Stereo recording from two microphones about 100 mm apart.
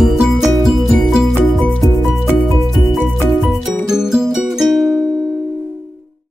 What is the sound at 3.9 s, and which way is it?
Music, 5° right (ahead or behind).